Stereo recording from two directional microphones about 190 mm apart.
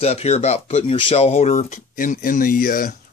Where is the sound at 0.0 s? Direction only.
35° left (ahead or behind).